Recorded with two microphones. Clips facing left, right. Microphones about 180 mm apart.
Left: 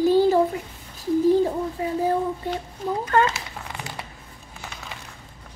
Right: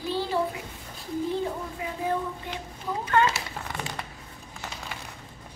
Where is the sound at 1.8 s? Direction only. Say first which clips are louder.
Left 8 dB; 35° left (ahead or behind).